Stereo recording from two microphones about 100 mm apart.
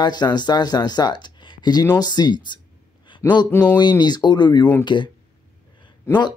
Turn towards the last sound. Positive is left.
turn(degrees=45)  # may be behind; listen again after turning